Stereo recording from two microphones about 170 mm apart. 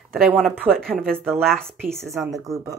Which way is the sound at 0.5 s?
10° right (ahead or behind).